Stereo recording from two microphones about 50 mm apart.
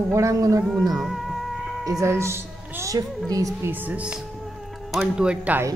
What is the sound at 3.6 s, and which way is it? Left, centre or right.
Speech, right.